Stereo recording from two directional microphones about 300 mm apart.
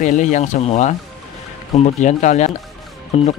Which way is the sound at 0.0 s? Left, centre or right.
Left.